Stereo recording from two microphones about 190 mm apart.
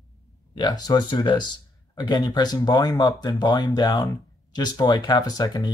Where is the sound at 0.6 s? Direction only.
20° left (ahead or behind).